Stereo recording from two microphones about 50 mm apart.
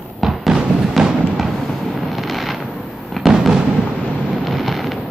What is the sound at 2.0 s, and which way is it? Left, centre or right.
Fireworks, centre.